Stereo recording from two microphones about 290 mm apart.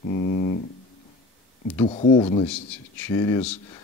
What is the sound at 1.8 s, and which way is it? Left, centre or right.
Speech, left.